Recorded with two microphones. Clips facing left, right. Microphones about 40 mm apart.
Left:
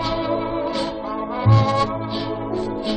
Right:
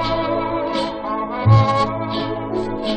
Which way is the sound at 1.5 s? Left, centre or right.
Centre.